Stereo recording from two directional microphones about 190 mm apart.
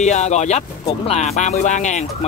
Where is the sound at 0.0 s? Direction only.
35° left (ahead or behind).